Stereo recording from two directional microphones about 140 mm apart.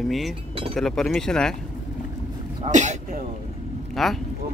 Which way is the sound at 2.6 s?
60° right (ahead or behind).